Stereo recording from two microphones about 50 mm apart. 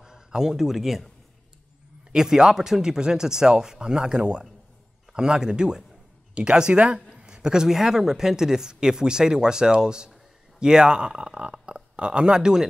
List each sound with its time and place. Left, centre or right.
0.0 s speech: centre
2.1 s speech: centre